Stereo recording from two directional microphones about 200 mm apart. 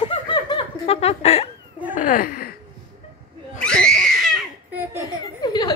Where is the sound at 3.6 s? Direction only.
5° left (ahead or behind).